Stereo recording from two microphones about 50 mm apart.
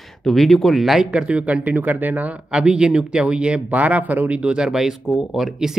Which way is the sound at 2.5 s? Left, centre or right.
Centre.